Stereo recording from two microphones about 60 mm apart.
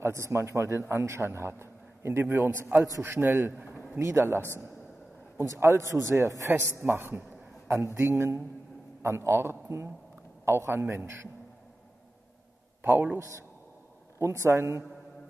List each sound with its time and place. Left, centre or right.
0.0 s a man's voice: right
4.0 s a man's voice: right
5.4 s a man's voice: right
6.6 s a man's voice: right
12.8 s a man's voice: right
14.4 s a man's voice: right